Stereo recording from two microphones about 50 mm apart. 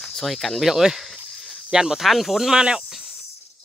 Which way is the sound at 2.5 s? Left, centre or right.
Centre.